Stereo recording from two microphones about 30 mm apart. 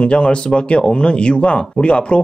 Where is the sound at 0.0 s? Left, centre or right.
Left.